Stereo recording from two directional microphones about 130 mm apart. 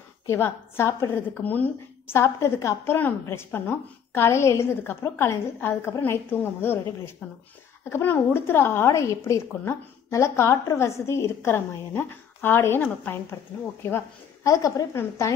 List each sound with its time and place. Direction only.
0.3 s a woman's voice: 20° left (ahead or behind)